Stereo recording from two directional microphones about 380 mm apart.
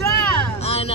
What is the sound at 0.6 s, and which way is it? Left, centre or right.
Music, centre.